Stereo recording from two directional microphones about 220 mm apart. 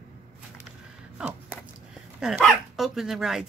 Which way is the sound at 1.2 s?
5° right (ahead or behind).